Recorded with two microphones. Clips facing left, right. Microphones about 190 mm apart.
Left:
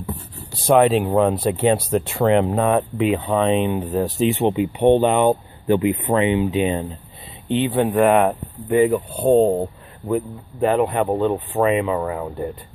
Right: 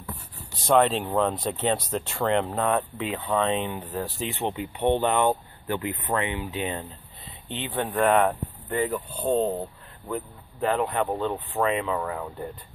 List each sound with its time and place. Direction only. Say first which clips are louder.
0.7 s speech: left 6 dB; 10° left (ahead or behind)
9.3 s speech: left 9 dB; 50° left (ahead or behind)
10.6 s speech: left 7 dB; 15° left (ahead or behind)